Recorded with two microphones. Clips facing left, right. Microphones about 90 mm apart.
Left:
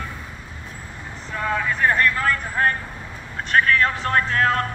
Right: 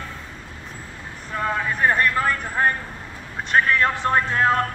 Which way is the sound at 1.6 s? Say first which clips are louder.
Left 1 dB; 20° right (ahead or behind).